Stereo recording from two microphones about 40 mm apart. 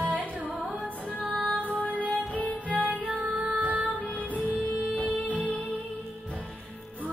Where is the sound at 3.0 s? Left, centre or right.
Right.